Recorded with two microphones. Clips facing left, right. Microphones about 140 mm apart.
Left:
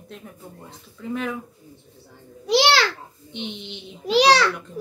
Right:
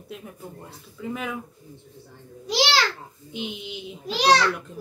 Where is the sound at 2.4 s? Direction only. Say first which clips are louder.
Left 5 dB; 65° left (ahead or behind).